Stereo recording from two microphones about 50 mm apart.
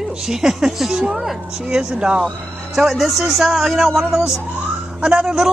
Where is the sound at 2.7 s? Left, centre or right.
Centre.